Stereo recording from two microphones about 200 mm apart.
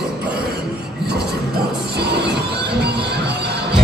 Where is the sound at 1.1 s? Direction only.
55° right (ahead or behind).